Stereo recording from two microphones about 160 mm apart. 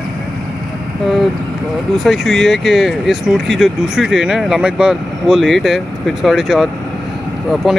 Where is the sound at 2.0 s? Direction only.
Centre (ahead or behind).